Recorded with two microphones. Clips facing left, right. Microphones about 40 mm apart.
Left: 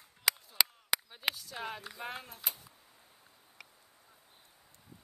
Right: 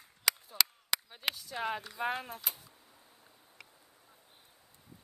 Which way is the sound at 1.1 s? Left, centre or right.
Centre.